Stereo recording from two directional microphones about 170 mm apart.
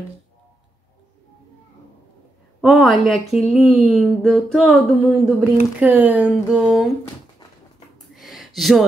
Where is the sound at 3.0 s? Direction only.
Centre (ahead or behind).